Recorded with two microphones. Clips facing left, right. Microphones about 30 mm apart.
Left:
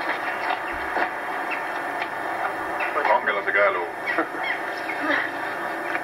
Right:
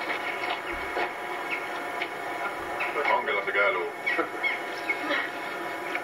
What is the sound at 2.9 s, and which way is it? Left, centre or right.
Radio, left.